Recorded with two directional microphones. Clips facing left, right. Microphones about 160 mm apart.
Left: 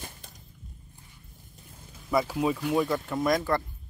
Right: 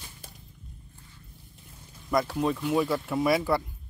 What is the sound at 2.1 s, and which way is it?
Speech, 5° left (ahead or behind).